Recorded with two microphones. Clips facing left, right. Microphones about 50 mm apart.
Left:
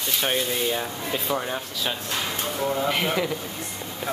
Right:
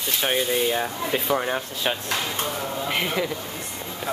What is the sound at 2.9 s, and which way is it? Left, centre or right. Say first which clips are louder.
Speech: left 1 dB; centre.